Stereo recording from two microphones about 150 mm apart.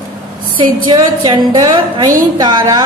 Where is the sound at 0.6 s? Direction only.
25° right (ahead or behind).